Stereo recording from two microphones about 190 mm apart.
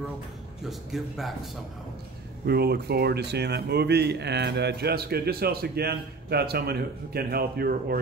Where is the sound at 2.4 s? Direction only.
55° right (ahead or behind).